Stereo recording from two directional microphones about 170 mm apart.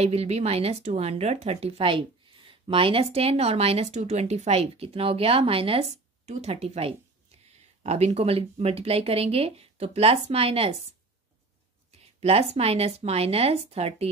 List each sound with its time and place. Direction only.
0.0 s speech: 40° right (ahead or behind)
11.9 s speech: 35° right (ahead or behind)